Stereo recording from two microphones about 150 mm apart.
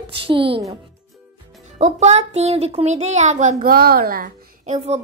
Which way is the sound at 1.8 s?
50° right (ahead or behind).